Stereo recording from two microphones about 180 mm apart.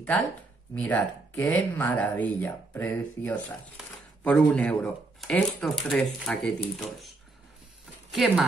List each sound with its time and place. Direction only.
0.7 s speech: 10° left (ahead or behind)
8.1 s speech: centre (ahead or behind)